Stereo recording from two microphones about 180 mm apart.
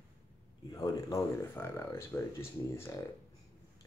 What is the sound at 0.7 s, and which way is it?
Speech, 20° left (ahead or behind).